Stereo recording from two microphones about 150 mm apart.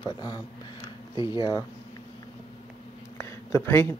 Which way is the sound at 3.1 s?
20° left (ahead or behind).